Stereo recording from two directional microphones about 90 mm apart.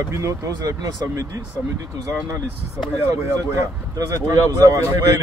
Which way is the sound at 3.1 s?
40° right (ahead or behind).